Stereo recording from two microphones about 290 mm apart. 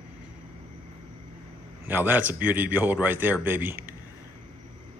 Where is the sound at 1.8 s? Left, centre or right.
Centre.